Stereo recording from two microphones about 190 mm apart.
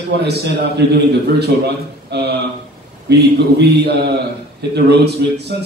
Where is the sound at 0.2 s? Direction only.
60° right (ahead or behind).